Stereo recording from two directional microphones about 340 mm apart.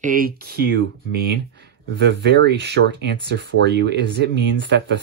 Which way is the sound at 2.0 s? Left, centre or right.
Right.